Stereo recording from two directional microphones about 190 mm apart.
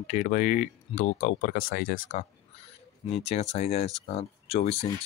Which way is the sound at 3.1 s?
35° left (ahead or behind).